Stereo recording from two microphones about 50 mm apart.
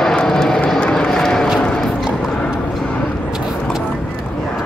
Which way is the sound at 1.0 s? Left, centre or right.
Centre.